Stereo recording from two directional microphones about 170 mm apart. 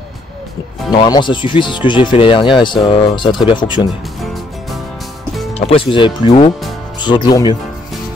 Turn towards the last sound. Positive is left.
turn(degrees=25)  # may be behind; listen again after turning